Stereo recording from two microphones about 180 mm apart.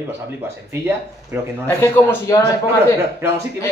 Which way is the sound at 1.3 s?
10° right (ahead or behind).